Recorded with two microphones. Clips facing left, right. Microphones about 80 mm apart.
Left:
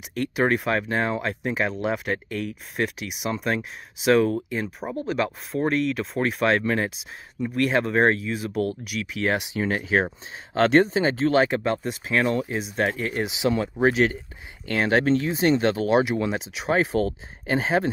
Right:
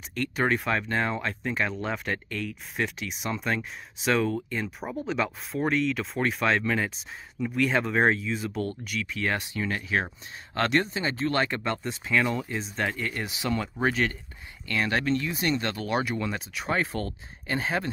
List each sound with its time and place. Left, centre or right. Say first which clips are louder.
0.4 s speech: left 4 dB; centre
4.6 s speech: left 3 dB; centre
8.5 s speech: left 5 dB; left
9.0 s speech: left 5 dB; centre
9.6 s speech: left 7 dB; left
11.6 s speech: left 5 dB; centre
14.7 s speech: left 6 dB; left